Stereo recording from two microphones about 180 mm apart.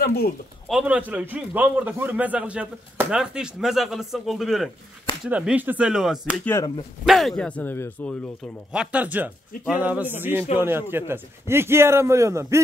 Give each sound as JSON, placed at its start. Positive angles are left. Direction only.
{"t": 0.0, "sound": "speech", "side_deg": 60}
{"t": 0.7, "sound": "a man's voice", "side_deg": -5}
{"t": 8.7, "sound": "a man's voice", "side_deg": -10}